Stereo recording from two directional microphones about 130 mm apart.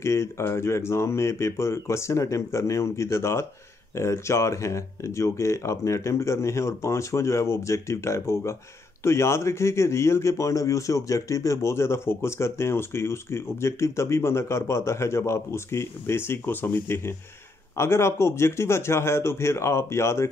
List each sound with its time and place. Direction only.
0.0 s a man's voice: 20° left (ahead or behind)